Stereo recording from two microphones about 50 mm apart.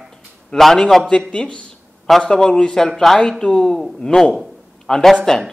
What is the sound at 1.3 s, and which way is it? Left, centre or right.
A man's voice, centre.